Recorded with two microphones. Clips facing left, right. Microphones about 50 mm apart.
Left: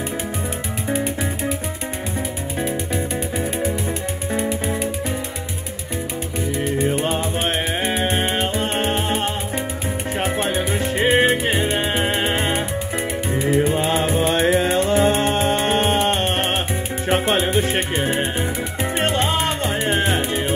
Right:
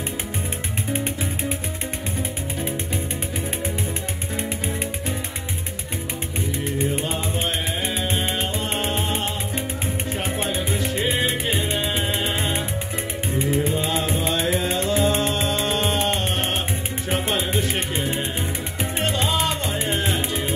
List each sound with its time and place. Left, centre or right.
6.5 s music: left